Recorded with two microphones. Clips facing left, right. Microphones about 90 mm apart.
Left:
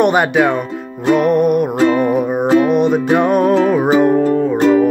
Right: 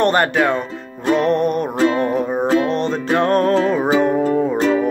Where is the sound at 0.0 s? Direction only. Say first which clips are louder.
Left 3 dB; 10° left (ahead or behind).